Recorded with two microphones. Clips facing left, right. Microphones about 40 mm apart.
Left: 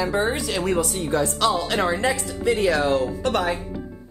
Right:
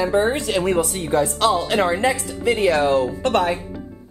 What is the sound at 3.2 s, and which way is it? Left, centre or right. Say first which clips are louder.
Speech: right 4 dB; right.